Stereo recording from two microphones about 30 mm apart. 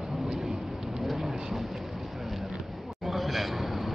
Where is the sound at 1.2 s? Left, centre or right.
Centre.